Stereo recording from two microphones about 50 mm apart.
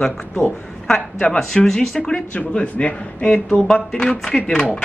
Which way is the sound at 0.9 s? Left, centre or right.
Centre.